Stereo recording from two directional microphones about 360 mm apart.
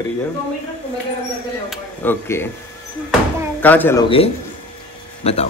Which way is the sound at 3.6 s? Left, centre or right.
Centre.